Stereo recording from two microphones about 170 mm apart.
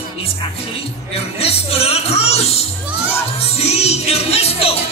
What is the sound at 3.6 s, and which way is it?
Music, 40° left (ahead or behind).